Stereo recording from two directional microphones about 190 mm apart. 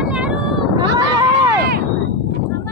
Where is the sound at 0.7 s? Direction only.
20° right (ahead or behind).